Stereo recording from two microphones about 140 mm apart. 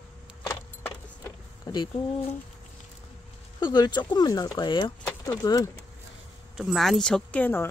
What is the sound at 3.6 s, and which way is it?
Speech, 30° left (ahead or behind).